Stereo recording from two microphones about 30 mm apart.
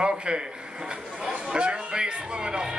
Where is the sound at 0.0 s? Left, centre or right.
Right.